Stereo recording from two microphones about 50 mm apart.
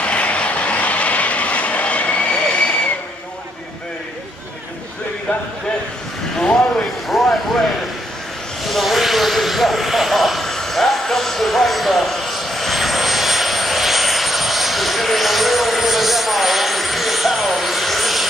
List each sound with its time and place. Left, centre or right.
0.0 s vehicle: left
7.1 s a sound: centre
8.6 s vehicle: centre